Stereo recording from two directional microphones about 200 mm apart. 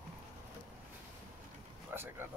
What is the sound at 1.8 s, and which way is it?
Vehicle, 10° right (ahead or behind).